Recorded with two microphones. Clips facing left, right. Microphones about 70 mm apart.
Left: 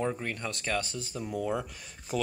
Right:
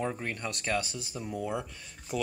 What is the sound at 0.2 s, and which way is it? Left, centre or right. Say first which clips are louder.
Speech: even; right.